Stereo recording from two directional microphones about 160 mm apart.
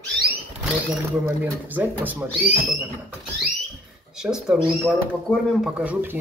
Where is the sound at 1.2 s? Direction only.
10° right (ahead or behind).